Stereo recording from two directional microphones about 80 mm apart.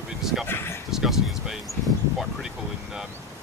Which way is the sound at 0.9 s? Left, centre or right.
Centre.